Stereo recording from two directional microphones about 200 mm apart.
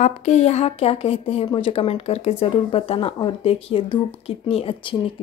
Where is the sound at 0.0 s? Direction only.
35° left (ahead or behind).